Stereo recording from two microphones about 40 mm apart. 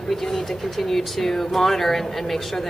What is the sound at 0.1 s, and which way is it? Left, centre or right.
A woman's voice, centre.